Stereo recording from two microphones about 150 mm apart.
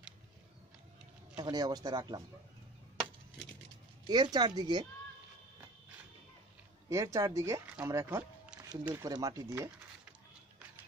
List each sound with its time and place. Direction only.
1.3 s speech: 25° right (ahead or behind)
4.1 s speech: 25° right (ahead or behind)
6.9 s speech: 20° right (ahead or behind)